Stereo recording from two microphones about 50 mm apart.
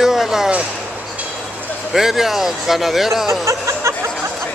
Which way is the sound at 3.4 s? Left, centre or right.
Right.